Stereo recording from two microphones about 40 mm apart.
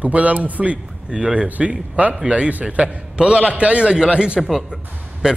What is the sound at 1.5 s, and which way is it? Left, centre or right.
Speech, right.